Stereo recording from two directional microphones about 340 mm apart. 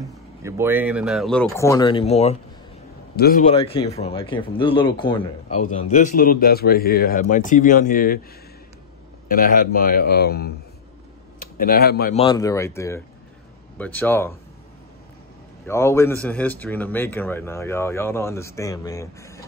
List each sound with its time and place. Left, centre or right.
0.4 s a man's voice: centre; by 8.2 s left
9.3 s a man's voice: left; by 14.3 s centre
15.6 s a man's voice: centre